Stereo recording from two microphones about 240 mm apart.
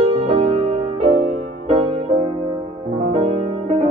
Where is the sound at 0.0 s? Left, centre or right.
Right.